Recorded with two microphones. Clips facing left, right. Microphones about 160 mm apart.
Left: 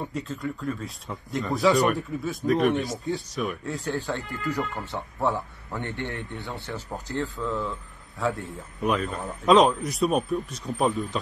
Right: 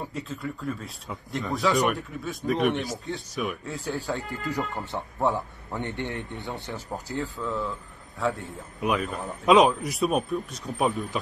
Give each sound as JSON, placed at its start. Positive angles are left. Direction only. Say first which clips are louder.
{"t": 0.0, "sound": "speech", "louder": "left 2 dB", "side_deg": 0}
{"t": 4.5, "sound": "a man's voice", "louder": "left 2 dB", "side_deg": -15}
{"t": 7.2, "sound": "speech", "louder": "left 2 dB", "side_deg": 0}